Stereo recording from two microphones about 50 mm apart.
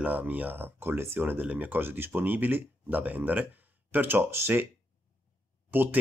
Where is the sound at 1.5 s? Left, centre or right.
Right.